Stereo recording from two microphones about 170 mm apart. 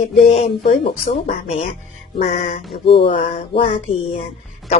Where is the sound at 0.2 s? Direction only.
35° left (ahead or behind).